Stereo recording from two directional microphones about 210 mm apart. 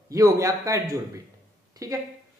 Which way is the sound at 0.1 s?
15° right (ahead or behind).